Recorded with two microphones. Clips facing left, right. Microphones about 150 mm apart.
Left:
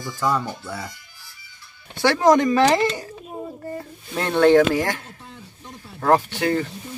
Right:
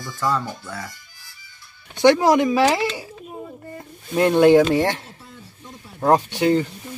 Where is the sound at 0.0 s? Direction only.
10° left (ahead or behind).